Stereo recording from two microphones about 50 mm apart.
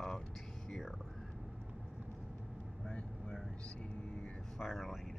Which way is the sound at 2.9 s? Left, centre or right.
Centre.